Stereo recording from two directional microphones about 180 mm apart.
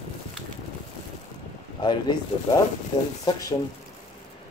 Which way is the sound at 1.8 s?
25° left (ahead or behind).